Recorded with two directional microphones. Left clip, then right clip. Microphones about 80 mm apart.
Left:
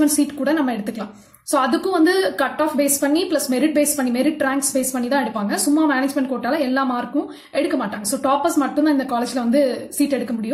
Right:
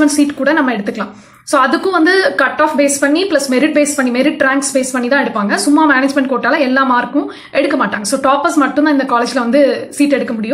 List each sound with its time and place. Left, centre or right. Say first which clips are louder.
0.0 s a woman's voice: right 7 dB; centre